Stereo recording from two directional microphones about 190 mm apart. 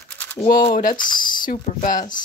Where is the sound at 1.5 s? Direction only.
45° left (ahead or behind).